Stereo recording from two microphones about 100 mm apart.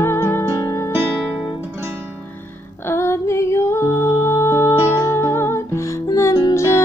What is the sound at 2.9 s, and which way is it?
Music, 25° left (ahead or behind).